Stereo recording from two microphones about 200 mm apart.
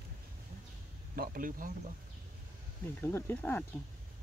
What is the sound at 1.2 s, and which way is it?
Speech, 45° right (ahead or behind).